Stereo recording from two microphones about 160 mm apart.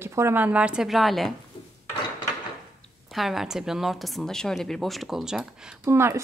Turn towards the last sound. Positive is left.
turn(degrees=-15)  # may be behind; listen again after turning